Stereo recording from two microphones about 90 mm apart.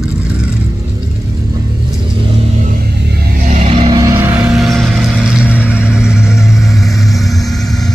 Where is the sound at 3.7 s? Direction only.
90° right.